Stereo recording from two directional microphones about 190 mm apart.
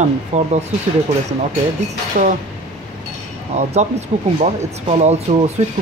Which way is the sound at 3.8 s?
35° right (ahead or behind).